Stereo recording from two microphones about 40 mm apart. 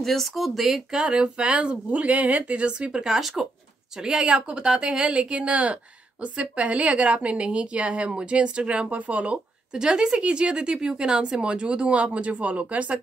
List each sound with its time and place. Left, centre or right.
0.0 s speech: centre
1.1 s speech: right
1.9 s speech: right
3.1 s speech: centre
4.0 s speech: right
9.8 s speech: centre